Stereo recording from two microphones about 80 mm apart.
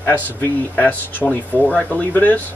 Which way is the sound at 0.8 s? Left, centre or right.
Centre.